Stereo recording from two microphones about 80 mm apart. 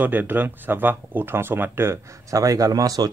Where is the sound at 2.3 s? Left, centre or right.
Right.